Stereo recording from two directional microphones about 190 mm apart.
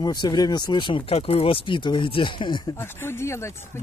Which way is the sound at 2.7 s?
10° left (ahead or behind).